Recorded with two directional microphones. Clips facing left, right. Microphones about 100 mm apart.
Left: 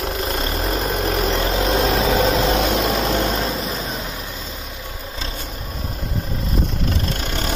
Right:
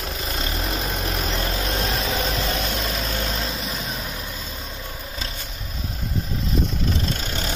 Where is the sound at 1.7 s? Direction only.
80° left.